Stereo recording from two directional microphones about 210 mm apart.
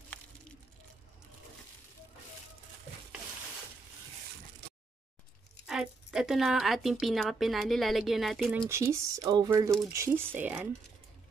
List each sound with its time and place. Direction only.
5.7 s a woman's voice: centre (ahead or behind)
8.6 s speech: 10° right (ahead or behind)